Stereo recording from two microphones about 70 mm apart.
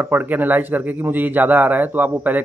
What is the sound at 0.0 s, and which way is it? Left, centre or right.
A man's voice, right.